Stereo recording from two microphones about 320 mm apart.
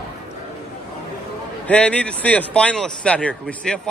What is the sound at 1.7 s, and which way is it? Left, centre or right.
A man's voice, centre.